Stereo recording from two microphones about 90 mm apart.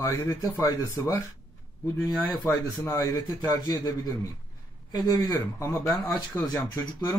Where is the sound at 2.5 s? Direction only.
45° left (ahead or behind).